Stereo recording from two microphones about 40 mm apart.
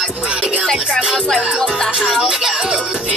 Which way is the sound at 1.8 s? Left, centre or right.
Centre.